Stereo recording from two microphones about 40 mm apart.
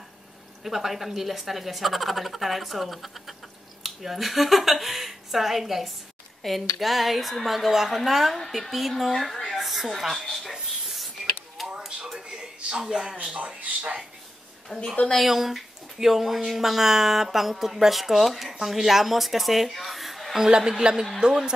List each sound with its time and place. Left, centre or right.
0.7 s a woman's voice: centre
10.1 s speech: centre
11.8 s a sound: centre
12.7 s a woman's voice: centre
13.6 s speech: right
14.7 s a woman's voice: left
15.1 s speech: centre
20.3 s a woman's voice: centre